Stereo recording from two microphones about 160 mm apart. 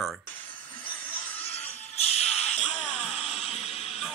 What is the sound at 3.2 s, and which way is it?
Music, 40° left (ahead or behind).